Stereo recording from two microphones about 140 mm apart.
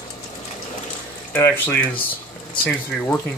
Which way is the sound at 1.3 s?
15° left (ahead or behind).